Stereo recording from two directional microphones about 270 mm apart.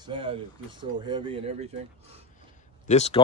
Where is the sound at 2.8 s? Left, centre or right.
Left.